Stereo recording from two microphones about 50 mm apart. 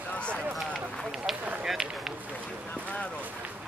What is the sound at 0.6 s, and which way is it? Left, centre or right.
Run, centre.